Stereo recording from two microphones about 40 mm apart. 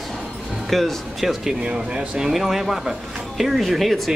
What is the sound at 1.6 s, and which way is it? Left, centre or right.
Speech, right.